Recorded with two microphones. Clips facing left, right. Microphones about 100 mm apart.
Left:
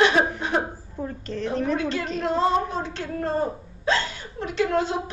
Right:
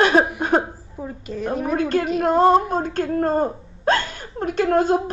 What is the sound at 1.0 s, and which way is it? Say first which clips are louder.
Speech: right 3 dB; 10° right (ahead or behind).